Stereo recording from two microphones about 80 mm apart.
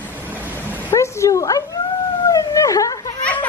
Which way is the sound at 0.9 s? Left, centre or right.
Left.